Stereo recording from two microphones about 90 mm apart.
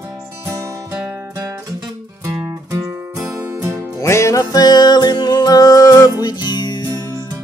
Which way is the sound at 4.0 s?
35° left (ahead or behind).